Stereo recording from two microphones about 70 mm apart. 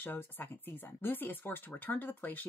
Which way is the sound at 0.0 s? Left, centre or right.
Left.